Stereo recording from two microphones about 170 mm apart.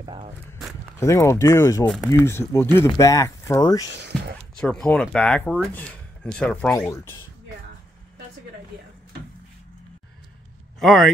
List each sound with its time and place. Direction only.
0.0 s speech: 30° right (ahead or behind)
0.9 s speech: 15° left (ahead or behind)
4.6 s speech: 5° left (ahead or behind)
10.8 s speech: centre (ahead or behind)